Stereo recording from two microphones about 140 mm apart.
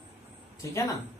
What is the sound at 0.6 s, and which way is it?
Speech, 20° left (ahead or behind).